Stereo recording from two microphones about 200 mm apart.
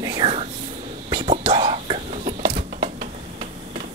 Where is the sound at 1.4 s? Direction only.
25° right (ahead or behind).